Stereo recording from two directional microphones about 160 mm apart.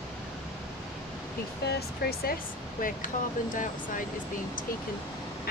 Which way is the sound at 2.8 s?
55° left (ahead or behind).